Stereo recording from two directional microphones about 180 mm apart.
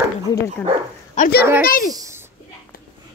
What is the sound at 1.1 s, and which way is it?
Speech, 50° left (ahead or behind).